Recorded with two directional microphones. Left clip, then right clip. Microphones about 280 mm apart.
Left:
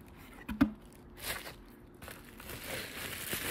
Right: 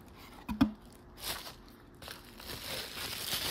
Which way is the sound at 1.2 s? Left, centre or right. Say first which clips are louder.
Even; centre.